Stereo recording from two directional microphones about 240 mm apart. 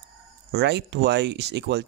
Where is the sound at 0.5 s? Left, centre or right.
Right.